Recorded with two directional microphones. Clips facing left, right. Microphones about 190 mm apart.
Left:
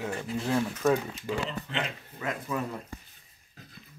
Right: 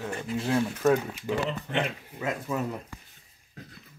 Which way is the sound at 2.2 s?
20° right (ahead or behind).